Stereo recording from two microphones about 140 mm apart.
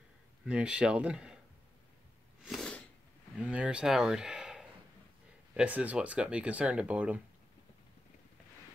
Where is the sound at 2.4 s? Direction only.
Centre (ahead or behind).